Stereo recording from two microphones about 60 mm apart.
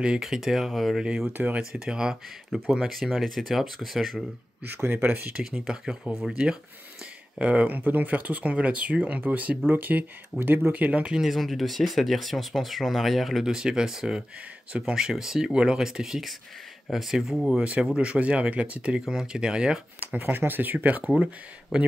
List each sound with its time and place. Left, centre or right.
0.2 s speech: centre
1.0 s speech: centre
1.3 s speech: right
1.6 s speech: centre
4.6 s speech: right
5.3 s speech: centre
11.1 s speech: centre
13.5 s speech: centre
17.8 s speech: centre
20.0 s speech: right
21.1 s speech: centre